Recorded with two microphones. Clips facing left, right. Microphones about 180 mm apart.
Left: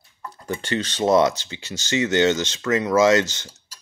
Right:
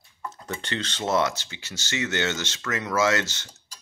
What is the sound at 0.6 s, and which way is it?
Speech, 10° left (ahead or behind).